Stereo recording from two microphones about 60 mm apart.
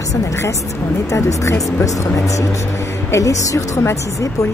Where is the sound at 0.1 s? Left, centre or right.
Left.